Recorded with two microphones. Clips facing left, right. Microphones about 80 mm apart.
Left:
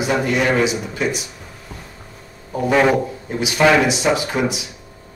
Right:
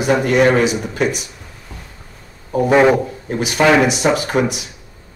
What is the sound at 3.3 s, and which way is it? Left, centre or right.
Speech, right.